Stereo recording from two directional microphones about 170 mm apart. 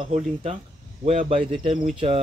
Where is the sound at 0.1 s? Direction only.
35° right (ahead or behind).